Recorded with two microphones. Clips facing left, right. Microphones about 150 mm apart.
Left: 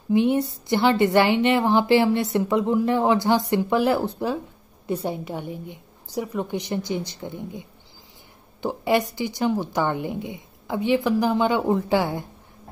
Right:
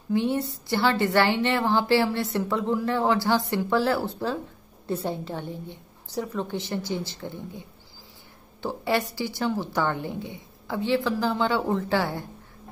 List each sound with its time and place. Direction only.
0.1 s a woman's voice: 20° left (ahead or behind)
8.6 s a woman's voice: 15° left (ahead or behind)